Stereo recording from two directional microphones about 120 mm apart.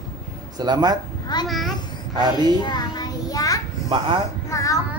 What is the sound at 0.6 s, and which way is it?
Speech, 35° right (ahead or behind).